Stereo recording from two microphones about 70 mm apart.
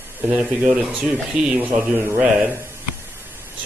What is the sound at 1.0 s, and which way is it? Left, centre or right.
Speech, centre.